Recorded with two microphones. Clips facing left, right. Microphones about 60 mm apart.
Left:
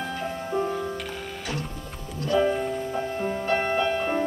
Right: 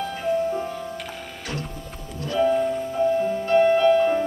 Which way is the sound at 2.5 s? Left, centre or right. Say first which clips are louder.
Right 5 dB; centre.